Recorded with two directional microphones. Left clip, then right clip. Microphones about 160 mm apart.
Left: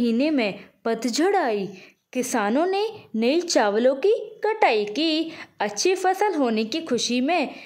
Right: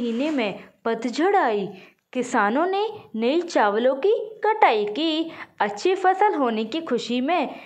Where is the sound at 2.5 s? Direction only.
30° left (ahead or behind).